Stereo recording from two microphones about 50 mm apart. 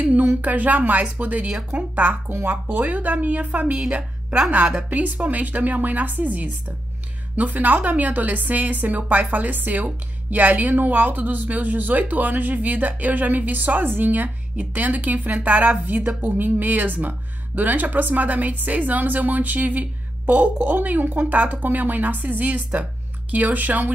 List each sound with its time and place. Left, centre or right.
0.0 s a sound: right
0.4 s a woman's voice: right
4.8 s a woman's voice: right